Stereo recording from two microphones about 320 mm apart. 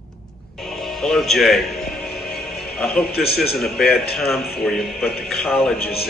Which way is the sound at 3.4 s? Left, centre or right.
Centre.